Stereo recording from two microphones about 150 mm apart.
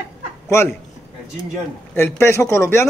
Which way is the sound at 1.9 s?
15° left (ahead or behind).